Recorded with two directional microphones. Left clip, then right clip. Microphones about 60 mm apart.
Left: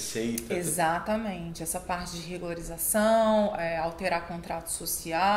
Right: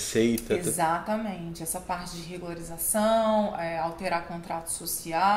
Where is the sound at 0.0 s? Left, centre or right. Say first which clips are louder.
Right 7 dB; right.